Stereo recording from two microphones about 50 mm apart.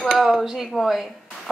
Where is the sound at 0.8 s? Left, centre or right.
Centre.